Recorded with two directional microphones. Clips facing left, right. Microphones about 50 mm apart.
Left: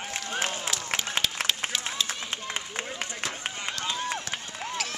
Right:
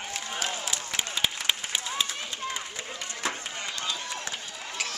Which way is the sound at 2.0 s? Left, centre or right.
Centre.